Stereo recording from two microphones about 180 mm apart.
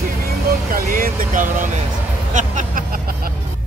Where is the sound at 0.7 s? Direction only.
50° right (ahead or behind).